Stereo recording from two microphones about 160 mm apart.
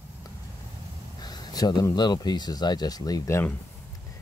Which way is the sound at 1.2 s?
25° left (ahead or behind).